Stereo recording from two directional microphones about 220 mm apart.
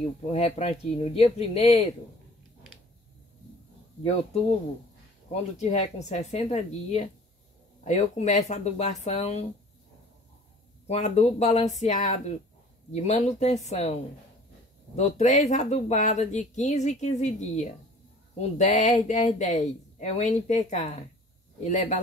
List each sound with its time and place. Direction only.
0.3 s speech: 30° left (ahead or behind)
4.0 s speech: 30° left (ahead or behind)
10.9 s speech: 30° left (ahead or behind)
15.0 s speech: 30° left (ahead or behind)